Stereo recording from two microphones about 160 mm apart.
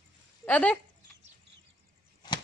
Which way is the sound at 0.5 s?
10° left (ahead or behind).